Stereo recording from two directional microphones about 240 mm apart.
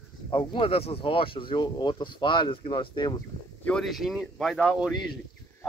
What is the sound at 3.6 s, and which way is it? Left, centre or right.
Speech, centre.